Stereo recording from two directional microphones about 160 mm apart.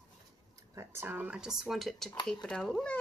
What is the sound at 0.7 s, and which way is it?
A woman's voice, 15° right (ahead or behind).